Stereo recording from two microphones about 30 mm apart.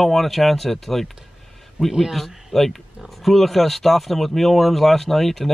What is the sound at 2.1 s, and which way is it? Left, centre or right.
Speech, centre.